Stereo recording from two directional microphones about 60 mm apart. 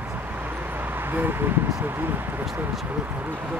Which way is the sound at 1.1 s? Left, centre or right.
Right.